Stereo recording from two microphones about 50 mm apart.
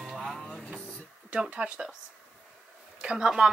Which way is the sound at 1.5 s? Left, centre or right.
Centre.